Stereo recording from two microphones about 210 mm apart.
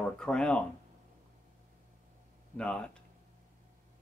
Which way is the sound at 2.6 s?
5° left (ahead or behind).